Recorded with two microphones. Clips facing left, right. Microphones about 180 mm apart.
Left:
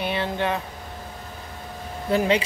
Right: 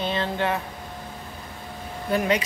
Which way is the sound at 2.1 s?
30° left (ahead or behind).